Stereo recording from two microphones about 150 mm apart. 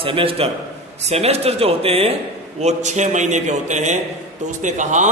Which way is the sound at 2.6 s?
50° right (ahead or behind).